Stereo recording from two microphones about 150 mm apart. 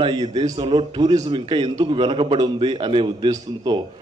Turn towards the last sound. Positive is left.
turn(degrees=-30)  # may be behind; listen again after turning